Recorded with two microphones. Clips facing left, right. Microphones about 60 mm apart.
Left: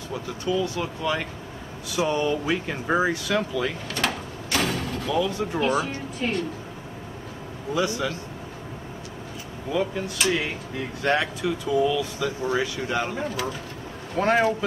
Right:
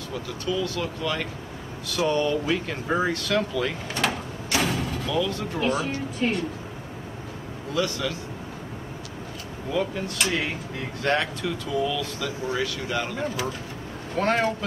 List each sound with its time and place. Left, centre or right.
0.1 s speech: centre
4.0 s vehicle: centre
5.1 s speech: centre
5.6 s speech: centre
7.7 s speech: centre
9.7 s speech: centre
13.2 s speech: centre